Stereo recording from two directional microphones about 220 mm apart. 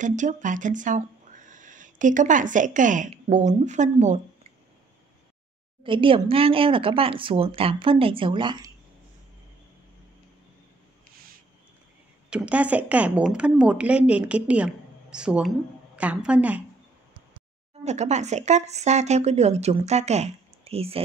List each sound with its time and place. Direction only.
0.0 s speech: 35° right (ahead or behind)
5.9 s speech: 25° right (ahead or behind)
12.3 s a woman's voice: 5° right (ahead or behind)
17.8 s speech: 30° right (ahead or behind)